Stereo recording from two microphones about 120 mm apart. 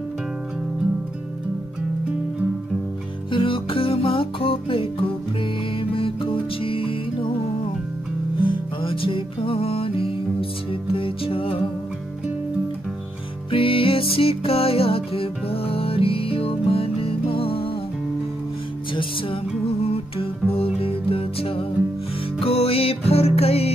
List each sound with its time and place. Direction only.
3.3 s music: 45° left (ahead or behind)
13.5 s music: 50° left (ahead or behind)
18.9 s music: 50° left (ahead or behind)